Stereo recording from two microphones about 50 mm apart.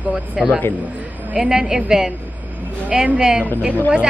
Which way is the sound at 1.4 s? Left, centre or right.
Centre.